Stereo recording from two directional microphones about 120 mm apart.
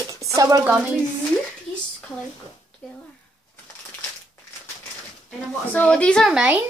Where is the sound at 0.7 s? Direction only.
10° right (ahead or behind).